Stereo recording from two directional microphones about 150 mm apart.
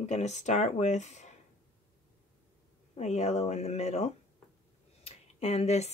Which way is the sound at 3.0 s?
50° left (ahead or behind).